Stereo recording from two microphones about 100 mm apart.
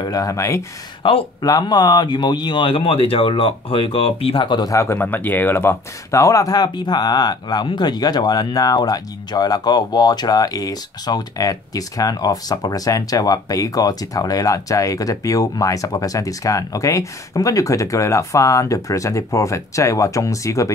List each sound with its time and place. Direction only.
0.0 s speech: 40° left (ahead or behind)
1.0 s speech: 60° left (ahead or behind)
1.4 s speech: 45° left (ahead or behind)
4.6 s speech: 30° left (ahead or behind)
4.9 s speech: 20° left (ahead or behind)